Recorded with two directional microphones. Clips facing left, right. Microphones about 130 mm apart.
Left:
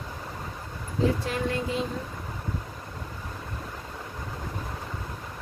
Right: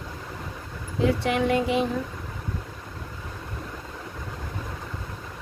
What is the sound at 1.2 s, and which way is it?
Speech, 70° right (ahead or behind).